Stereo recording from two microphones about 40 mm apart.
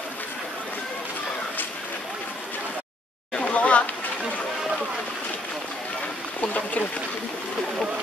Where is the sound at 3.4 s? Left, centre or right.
Left.